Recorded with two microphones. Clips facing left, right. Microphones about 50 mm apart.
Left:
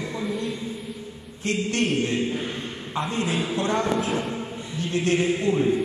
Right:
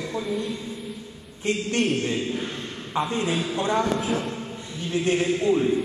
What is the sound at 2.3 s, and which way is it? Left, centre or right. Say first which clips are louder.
Speech: left 1 dB; centre.